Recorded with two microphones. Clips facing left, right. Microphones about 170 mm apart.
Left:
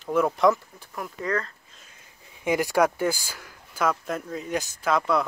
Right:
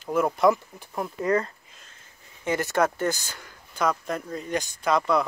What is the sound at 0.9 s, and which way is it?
Speech, 25° right (ahead or behind).